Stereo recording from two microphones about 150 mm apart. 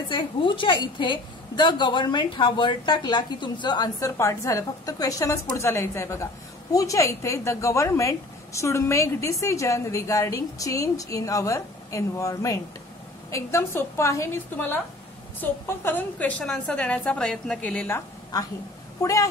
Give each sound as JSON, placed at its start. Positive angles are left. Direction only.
{"t": 0.1, "sound": "a woman's voice", "side_deg": 35}